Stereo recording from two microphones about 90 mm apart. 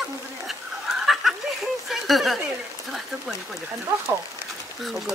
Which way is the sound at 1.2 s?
5° right (ahead or behind).